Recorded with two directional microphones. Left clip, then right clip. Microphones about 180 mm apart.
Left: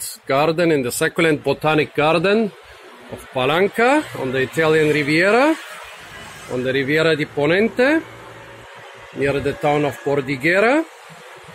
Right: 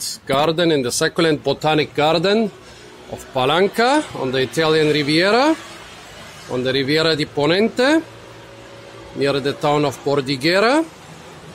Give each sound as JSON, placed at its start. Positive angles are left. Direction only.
{"t": 0.3, "sound": "speech", "side_deg": 0}
{"t": 3.3, "sound": "speech", "side_deg": -10}
{"t": 6.5, "sound": "speech", "side_deg": -10}
{"t": 9.2, "sound": "speech", "side_deg": -15}